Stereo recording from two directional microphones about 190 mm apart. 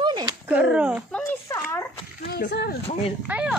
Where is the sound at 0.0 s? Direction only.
20° right (ahead or behind).